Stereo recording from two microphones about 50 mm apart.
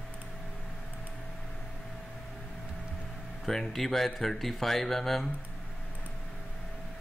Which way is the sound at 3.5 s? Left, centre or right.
Centre.